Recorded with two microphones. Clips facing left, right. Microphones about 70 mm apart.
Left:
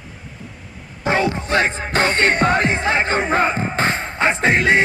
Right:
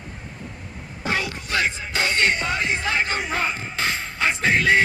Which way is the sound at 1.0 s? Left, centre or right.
Left.